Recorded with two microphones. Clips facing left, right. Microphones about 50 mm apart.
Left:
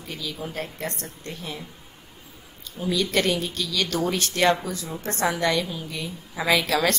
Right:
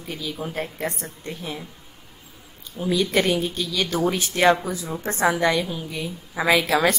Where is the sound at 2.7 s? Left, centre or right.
Centre.